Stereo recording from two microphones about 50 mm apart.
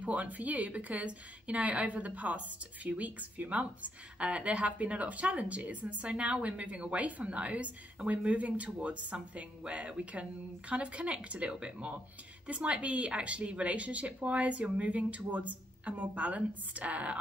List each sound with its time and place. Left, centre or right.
0.0 s a woman's voice: right